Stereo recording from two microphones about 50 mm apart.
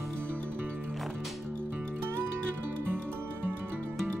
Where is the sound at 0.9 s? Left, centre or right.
Centre.